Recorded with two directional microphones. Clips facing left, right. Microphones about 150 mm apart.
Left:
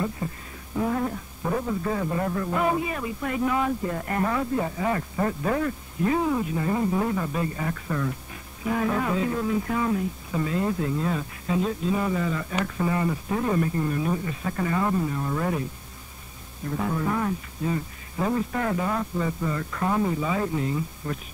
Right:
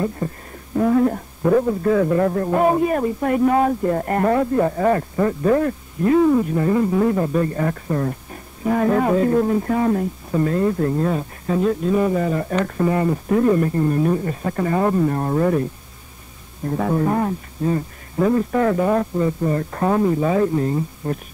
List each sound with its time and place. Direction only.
0.0 s speech: 45° right (ahead or behind)
16.6 s speech: 45° right (ahead or behind)